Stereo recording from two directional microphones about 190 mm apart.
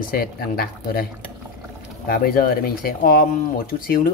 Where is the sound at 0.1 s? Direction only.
50° left (ahead or behind).